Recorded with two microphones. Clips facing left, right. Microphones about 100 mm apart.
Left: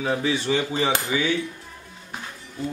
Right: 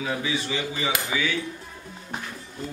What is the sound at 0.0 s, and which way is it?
Speech, 40° left (ahead or behind).